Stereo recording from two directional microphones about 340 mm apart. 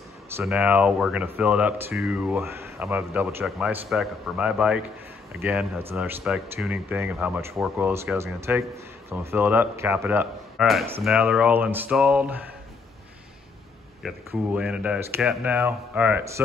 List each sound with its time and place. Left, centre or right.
0.4 s speech: centre
14.0 s speech: centre